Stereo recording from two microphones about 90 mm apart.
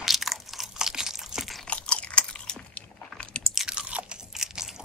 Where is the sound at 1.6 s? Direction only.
10° left (ahead or behind).